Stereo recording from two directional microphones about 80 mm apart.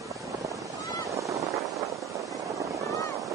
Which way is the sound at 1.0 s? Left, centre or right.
Right.